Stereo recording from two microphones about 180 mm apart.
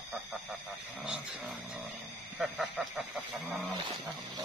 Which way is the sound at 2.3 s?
Centre (ahead or behind).